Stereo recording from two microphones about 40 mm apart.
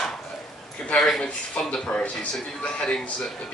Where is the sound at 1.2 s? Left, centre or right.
Centre.